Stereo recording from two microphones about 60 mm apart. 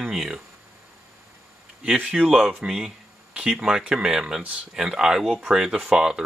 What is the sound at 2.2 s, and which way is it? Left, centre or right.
Speech, centre.